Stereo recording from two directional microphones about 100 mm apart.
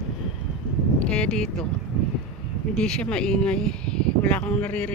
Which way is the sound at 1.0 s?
10° left (ahead or behind).